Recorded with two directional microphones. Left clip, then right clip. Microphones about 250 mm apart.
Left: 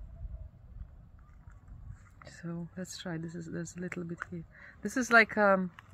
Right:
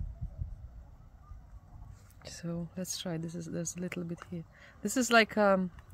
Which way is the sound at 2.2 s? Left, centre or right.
Right.